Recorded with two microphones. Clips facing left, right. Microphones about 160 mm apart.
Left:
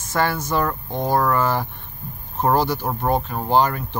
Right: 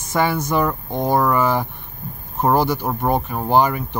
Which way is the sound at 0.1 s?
15° right (ahead or behind).